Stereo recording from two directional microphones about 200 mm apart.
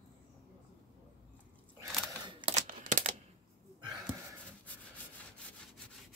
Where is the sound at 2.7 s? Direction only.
40° right (ahead or behind).